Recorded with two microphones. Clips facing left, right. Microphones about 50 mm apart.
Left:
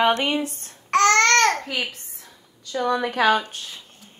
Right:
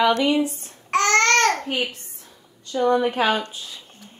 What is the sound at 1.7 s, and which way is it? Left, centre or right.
A woman's voice, left.